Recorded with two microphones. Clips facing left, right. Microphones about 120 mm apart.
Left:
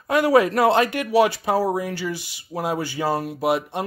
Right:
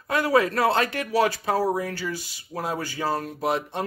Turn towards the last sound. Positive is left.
turn(degrees=10)  # may be behind; listen again after turning